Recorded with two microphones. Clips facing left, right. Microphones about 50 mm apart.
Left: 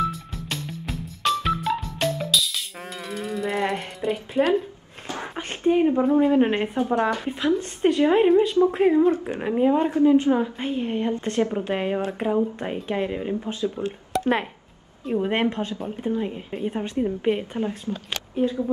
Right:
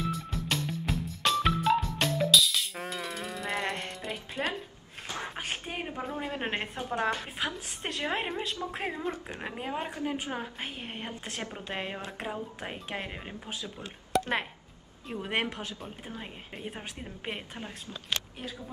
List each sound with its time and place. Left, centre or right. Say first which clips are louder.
0.0 s music: left 7 dB; centre
5.6 s speech: left 18 dB; centre
5.9 s a woman's voice: left 16 dB; centre
10.0 s a woman's voice: left 16 dB; centre
11.7 s a woman's voice: left 11 dB; centre
14.1 s a sound: left 4 dB; centre
15.1 s a woman's voice: left 9 dB; left
15.5 s speech: left 10 dB; left
15.8 s a woman's voice: left 15 dB; centre